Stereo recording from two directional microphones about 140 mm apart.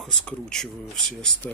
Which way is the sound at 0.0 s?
5° left (ahead or behind).